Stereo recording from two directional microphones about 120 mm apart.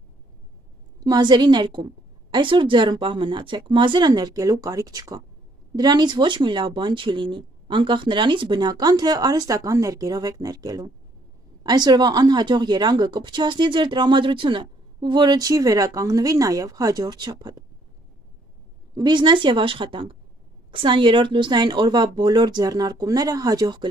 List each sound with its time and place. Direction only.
1.0 s a woman's voice: 35° right (ahead or behind)
18.9 s a woman's voice: 40° right (ahead or behind)